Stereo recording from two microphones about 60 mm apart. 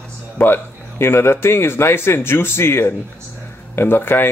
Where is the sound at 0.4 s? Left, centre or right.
Left.